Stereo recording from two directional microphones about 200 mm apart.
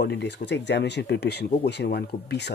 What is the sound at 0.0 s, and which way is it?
Speech, 60° left (ahead or behind).